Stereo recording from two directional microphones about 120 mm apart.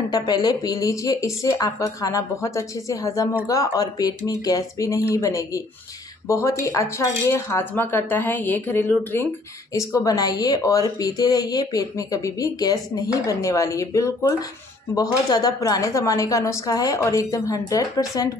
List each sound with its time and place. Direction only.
0.1 s speech: 35° left (ahead or behind); by 9.3 s 15° left (ahead or behind)
10.0 s speech: 30° left (ahead or behind)